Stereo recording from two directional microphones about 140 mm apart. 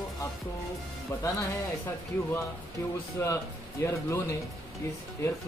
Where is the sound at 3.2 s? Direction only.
20° left (ahead or behind).